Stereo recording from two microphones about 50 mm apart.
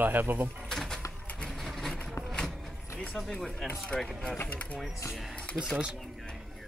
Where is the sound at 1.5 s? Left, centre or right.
Centre.